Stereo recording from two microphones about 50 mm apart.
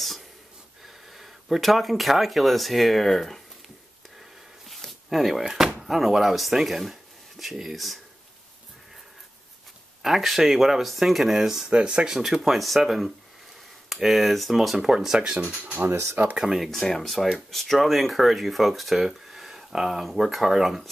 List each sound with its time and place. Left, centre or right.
0.8 s speech: centre
4.6 s a sound: centre
5.5 s speech: centre
10.0 s speech: centre
11.7 s speech: centre
16.6 s speech: centre